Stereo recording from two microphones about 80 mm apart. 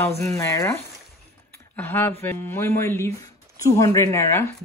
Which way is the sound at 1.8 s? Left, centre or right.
Left.